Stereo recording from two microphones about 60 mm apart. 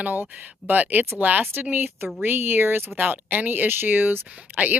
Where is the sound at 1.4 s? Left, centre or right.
Right.